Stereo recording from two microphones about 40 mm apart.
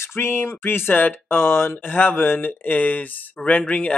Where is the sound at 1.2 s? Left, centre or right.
Left.